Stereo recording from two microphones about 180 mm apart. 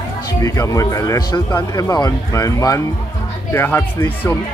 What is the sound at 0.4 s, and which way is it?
Speech, 20° left (ahead or behind).